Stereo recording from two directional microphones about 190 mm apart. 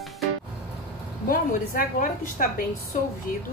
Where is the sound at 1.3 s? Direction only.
50° left (ahead or behind).